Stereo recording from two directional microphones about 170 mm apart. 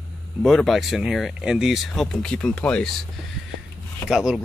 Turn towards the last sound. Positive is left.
turn(degrees=-5)  # may be behind; listen again after turning